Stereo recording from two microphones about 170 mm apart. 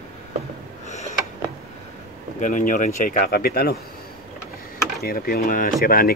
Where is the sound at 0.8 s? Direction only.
45° left (ahead or behind).